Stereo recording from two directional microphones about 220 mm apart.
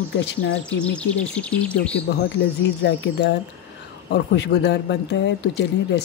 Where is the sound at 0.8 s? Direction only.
5° left (ahead or behind).